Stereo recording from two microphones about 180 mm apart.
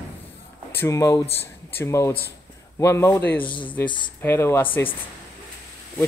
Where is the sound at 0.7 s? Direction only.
15° left (ahead or behind).